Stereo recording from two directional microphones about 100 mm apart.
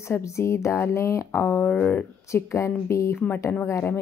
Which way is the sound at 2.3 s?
30° left (ahead or behind).